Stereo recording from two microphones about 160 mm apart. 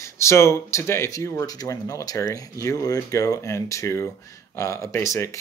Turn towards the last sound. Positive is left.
turn(degrees=15)  # may be behind; listen again after turning